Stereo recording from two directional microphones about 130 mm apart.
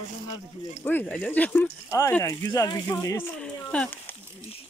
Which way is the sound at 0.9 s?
15° left (ahead or behind).